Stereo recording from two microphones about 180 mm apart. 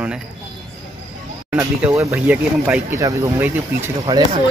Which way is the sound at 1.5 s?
10° right (ahead or behind).